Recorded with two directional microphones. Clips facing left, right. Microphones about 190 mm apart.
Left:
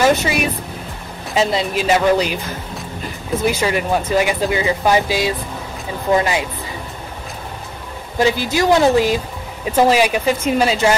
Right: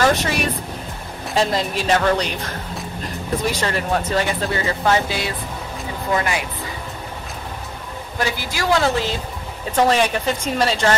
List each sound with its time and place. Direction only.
0.0 s speech: 5° left (ahead or behind)
3.4 s a woman's voice: 5° left (ahead or behind); by 6.4 s 20° left (ahead or behind)
8.2 s a woman's voice: 20° left (ahead or behind)